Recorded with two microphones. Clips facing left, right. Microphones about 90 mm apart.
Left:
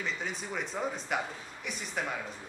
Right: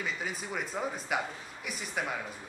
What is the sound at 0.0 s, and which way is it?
Speech, 5° right (ahead or behind).